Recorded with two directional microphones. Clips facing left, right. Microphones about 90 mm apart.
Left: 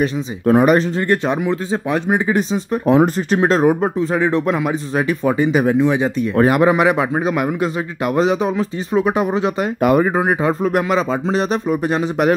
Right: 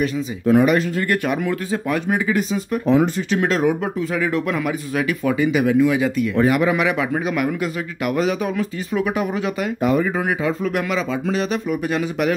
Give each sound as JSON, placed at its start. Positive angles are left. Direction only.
{"t": 0.0, "sound": "speech", "side_deg": 40}
{"t": 0.9, "sound": "speech", "side_deg": 25}
{"t": 6.3, "sound": "speech", "side_deg": 45}